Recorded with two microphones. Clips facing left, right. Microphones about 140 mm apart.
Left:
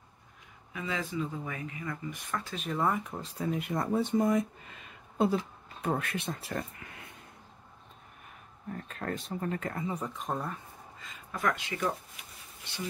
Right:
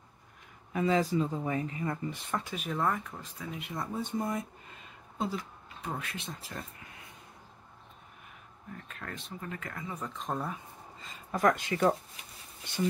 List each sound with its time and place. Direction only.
0.7 s speech: 40° right (ahead or behind)
2.4 s speech: 5° right (ahead or behind)
2.8 s speech: 15° left (ahead or behind)
3.5 s speech: 55° left (ahead or behind); by 4.5 s 85° left
5.3 s speech: 50° left (ahead or behind)
8.7 s speech: 35° left (ahead or behind)
9.9 s speech: 10° left (ahead or behind)
11.0 s speech: 40° right (ahead or behind)